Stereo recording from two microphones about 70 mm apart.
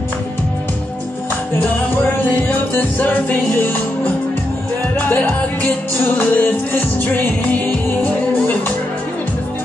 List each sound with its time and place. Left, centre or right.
2.3 s music: left